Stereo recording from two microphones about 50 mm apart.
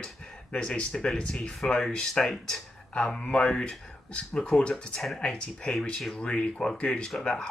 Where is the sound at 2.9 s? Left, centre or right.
Left.